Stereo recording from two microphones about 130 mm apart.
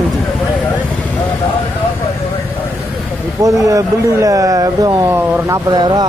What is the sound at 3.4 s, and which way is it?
Speech, 25° right (ahead or behind).